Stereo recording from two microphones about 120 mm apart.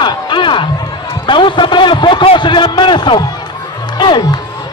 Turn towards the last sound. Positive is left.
turn(degrees=35)  # may be behind; listen again after turning